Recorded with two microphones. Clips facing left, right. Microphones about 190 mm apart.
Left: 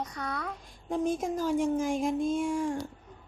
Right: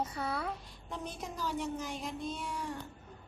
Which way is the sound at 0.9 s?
50° left (ahead or behind).